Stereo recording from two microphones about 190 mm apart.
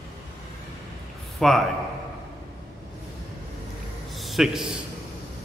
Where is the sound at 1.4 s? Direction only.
5° left (ahead or behind).